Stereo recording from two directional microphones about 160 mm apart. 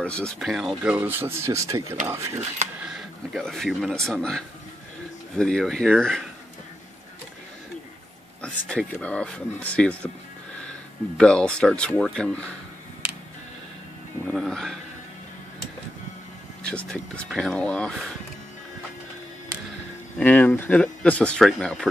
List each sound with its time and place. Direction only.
0.0 s speech: 5° left (ahead or behind); by 2.4 s 15° right (ahead or behind)
2.8 s speech: centre (ahead or behind)
8.4 s speech: 5° left (ahead or behind)
11.1 s speech: 5° left (ahead or behind)
14.2 s speech: 5° left (ahead or behind)
16.6 s speech: 5° left (ahead or behind)
20.2 s speech: 10° left (ahead or behind)